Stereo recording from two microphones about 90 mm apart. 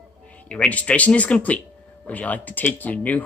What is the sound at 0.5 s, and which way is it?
Speech, 15° left (ahead or behind).